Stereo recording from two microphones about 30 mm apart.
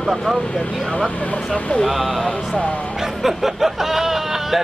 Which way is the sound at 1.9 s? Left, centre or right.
Centre.